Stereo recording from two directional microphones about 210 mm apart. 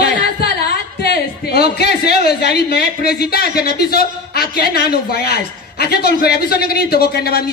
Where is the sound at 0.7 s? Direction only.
50° left (ahead or behind).